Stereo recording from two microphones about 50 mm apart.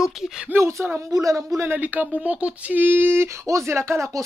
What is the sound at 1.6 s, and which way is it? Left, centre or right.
Speech, right.